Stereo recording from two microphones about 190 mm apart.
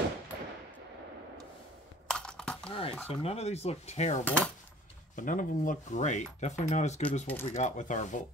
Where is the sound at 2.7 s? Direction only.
30° left (ahead or behind).